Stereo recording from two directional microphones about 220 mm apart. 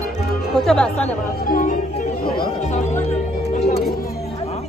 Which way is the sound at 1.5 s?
35° left (ahead or behind).